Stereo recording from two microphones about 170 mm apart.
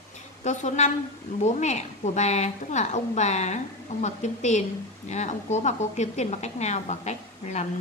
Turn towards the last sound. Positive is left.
turn(degrees=45)  # may be behind; listen again after turning